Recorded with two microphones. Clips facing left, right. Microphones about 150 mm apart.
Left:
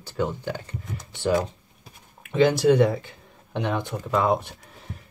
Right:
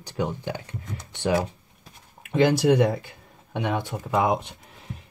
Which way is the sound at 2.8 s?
5° right (ahead or behind).